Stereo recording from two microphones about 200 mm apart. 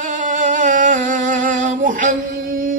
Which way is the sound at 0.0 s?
40° right (ahead or behind).